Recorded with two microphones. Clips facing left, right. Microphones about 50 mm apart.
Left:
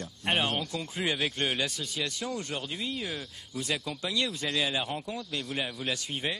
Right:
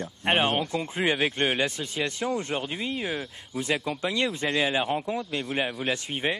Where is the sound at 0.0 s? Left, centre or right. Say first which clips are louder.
Right 5 dB; right.